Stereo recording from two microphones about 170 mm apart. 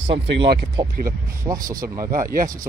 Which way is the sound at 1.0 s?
20° right (ahead or behind).